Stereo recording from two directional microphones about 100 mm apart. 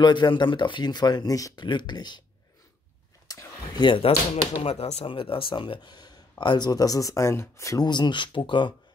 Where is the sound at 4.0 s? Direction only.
70° left (ahead or behind); by 7.8 s 30° left (ahead or behind).